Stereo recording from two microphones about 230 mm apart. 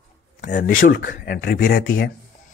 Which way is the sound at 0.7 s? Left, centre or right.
Left.